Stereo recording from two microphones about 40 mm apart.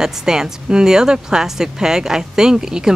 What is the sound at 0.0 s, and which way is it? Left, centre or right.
A woman's voice, centre.